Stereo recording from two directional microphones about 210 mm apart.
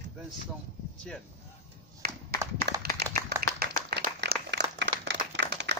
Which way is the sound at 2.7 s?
50° right (ahead or behind).